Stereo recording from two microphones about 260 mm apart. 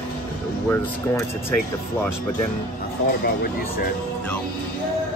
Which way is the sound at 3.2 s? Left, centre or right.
Left.